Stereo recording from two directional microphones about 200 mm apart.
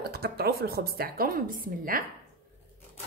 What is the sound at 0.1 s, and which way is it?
A woman's voice, 50° right (ahead or behind).